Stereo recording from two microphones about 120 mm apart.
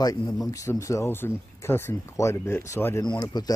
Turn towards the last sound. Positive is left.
turn(degrees=35)  # may be behind; listen again after turning